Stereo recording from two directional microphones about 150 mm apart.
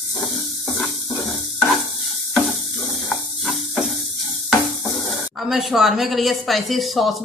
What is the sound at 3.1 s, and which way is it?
Spray, centre (ahead or behind).